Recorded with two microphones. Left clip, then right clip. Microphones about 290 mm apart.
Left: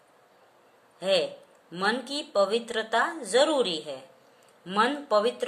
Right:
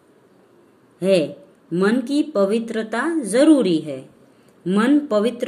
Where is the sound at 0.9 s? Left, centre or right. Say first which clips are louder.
Right 7 dB; centre.